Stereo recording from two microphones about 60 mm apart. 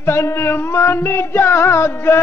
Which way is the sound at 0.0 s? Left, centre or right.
Left.